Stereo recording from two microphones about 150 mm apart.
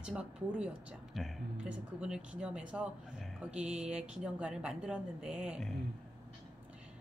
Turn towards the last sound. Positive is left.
turn(degrees=-5)  # may be behind; listen again after turning